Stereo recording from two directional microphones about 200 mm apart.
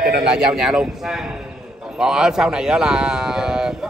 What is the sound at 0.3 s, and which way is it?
A man's voice, 5° right (ahead or behind).